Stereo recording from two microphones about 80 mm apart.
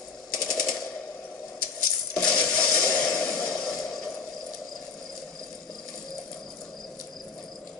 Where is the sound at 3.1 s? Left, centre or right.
Centre.